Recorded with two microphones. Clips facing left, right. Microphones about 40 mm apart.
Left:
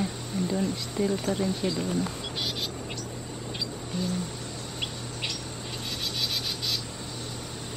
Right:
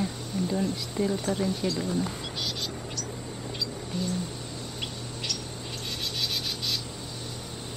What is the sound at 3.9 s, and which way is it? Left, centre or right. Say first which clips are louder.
Speech: left 1 dB; centre.